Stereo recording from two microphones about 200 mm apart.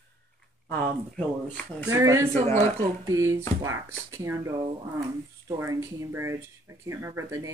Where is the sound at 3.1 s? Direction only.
15° right (ahead or behind).